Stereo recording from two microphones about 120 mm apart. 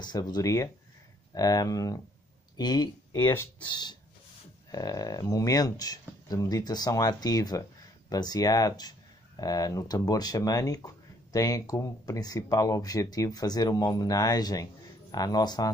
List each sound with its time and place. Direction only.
0.0 s speech: 35° left (ahead or behind)
3.3 s speech: 15° left (ahead or behind)
3.6 s speech: 40° left (ahead or behind)